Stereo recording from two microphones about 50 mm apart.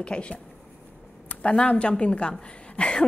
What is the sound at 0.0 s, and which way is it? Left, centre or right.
A woman's voice, left.